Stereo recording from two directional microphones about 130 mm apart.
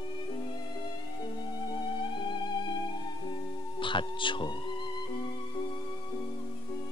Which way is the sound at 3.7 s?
40° left (ahead or behind).